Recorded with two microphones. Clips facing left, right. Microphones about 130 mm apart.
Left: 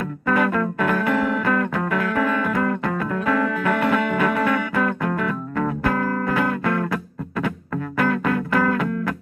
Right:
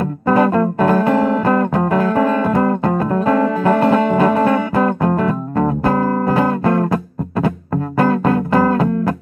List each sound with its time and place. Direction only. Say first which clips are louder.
0.3 s music: right 7 dB; 30° right (ahead or behind)